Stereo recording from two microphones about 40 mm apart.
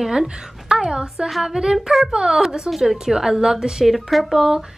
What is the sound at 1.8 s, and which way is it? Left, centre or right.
Speech, centre.